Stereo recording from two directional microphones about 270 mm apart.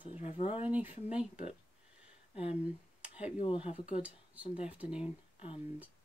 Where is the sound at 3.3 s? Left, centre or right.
Centre.